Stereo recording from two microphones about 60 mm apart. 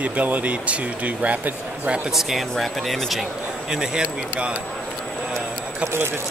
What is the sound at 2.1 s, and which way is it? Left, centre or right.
Speech, centre.